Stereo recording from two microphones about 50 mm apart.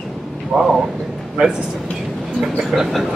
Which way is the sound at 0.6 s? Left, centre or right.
Centre.